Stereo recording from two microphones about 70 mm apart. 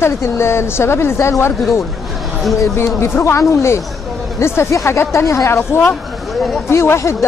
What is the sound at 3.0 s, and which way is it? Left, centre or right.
Speech, left.